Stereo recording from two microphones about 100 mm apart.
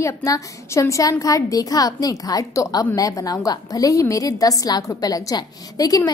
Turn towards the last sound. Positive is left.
turn(degrees=40)  # may be behind; listen again after turning